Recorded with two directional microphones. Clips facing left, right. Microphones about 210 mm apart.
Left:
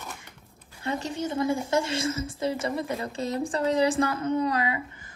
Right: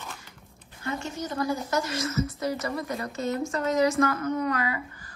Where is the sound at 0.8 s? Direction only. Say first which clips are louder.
Left 2 dB; 35° left (ahead or behind).